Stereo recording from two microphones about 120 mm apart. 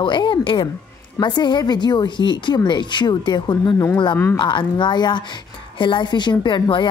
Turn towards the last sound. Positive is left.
turn(degrees=40)  # may be behind; listen again after turning